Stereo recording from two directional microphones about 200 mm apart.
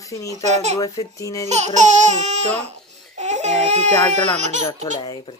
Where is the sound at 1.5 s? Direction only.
35° right (ahead or behind).